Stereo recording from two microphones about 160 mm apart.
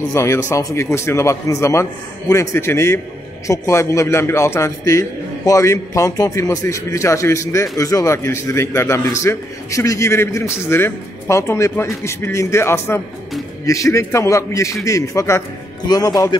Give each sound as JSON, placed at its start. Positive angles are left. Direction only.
{"t": 0.1, "sound": "a man's voice", "side_deg": 15}